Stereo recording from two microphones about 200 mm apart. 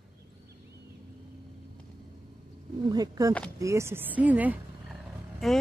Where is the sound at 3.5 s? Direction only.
15° right (ahead or behind).